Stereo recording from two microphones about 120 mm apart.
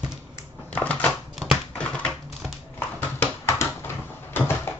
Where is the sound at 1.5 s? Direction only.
10° left (ahead or behind).